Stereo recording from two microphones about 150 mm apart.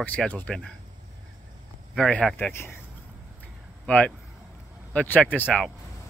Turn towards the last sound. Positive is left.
turn(degrees=10)  # may be behind; listen again after turning